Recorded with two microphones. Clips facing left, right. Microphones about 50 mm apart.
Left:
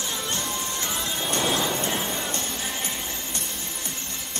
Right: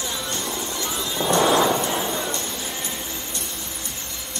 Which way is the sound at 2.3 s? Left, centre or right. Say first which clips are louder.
Right 1 dB; left.